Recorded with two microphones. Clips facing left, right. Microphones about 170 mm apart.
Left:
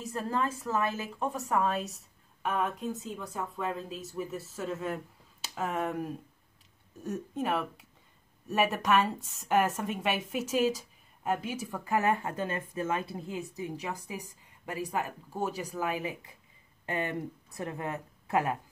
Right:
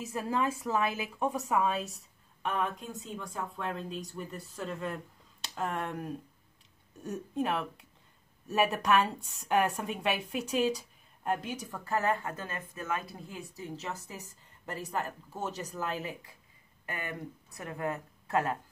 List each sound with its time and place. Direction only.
0.0 s a woman's voice: 10° right (ahead or behind); by 18.6 s 15° left (ahead or behind)